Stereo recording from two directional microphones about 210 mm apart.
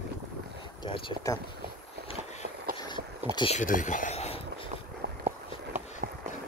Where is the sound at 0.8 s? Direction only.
20° left (ahead or behind).